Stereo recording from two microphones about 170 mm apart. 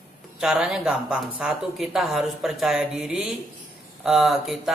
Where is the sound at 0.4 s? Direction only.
5° right (ahead or behind).